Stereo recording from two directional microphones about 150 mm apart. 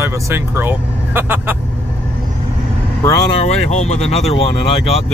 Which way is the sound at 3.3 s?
45° left (ahead or behind).